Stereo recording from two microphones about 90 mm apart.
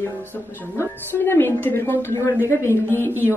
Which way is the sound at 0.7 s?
25° left (ahead or behind).